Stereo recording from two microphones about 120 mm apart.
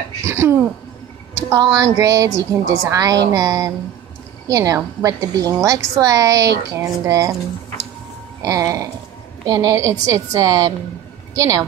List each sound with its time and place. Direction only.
0.2 s a woman's voice: 20° right (ahead or behind)
8.4 s a woman's voice: 25° right (ahead or behind)